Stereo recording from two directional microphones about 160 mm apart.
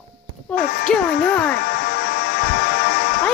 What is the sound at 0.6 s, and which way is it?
Speech, 70° left (ahead or behind).